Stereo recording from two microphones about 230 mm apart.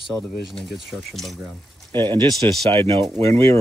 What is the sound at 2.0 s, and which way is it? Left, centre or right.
Speech, centre.